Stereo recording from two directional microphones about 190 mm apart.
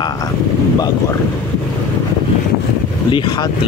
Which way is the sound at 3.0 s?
25° left (ahead or behind).